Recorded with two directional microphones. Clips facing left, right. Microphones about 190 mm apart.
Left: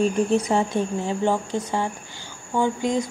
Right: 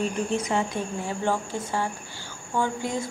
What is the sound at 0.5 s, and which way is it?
Speech, 35° left (ahead or behind).